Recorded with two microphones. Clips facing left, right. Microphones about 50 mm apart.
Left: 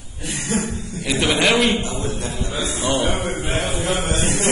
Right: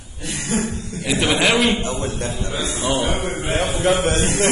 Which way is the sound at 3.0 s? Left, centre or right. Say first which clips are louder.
Even; left.